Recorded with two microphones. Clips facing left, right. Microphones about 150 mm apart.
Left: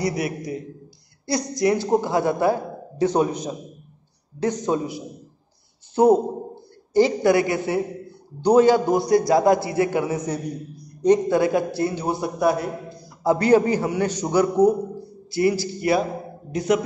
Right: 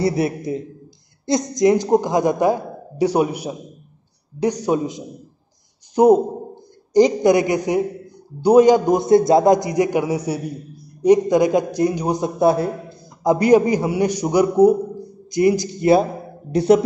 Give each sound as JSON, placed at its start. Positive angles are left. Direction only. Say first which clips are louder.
{"t": 0.0, "sound": "a man's voice", "louder": "right 5 dB", "side_deg": -30}
{"t": 13.2, "sound": "a man's voice", "louder": "right 3 dB", "side_deg": -15}
{"t": 16.5, "sound": "speech", "louder": "right 7 dB", "side_deg": -30}